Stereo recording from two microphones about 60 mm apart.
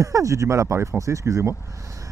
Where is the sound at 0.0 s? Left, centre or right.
Right.